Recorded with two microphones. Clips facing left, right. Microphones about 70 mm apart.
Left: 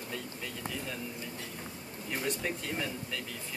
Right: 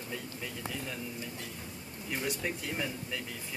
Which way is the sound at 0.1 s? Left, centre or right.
Centre.